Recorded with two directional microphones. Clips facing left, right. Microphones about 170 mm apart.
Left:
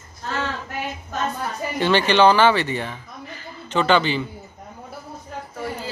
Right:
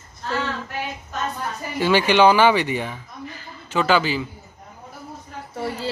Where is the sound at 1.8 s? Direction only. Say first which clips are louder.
Right 1 dB; 10° right (ahead or behind).